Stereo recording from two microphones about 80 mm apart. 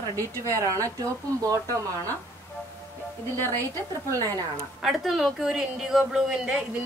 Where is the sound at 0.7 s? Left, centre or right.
Right.